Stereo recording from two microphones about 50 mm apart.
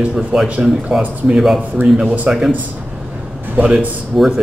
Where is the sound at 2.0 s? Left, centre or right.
Right.